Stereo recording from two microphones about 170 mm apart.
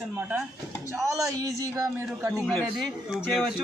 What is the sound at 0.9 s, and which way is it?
A man's voice, 20° right (ahead or behind).